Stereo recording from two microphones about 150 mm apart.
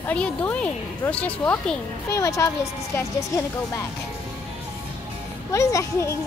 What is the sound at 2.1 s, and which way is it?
Speech, 20° left (ahead or behind).